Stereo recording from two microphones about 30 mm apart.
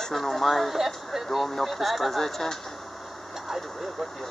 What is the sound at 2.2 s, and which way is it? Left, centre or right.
Speech, centre.